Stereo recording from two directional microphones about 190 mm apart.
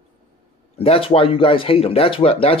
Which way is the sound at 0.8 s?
30° left (ahead or behind).